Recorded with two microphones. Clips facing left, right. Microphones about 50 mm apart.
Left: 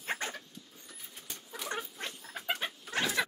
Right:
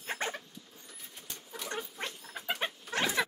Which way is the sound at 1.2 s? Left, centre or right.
Centre.